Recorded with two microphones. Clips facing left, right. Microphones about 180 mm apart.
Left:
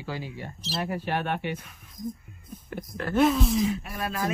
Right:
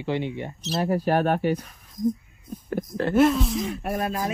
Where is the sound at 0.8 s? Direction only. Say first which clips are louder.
Right 8 dB; 40° right (ahead or behind).